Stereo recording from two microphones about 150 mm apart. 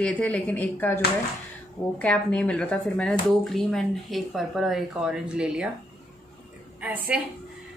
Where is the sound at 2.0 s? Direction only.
5° left (ahead or behind).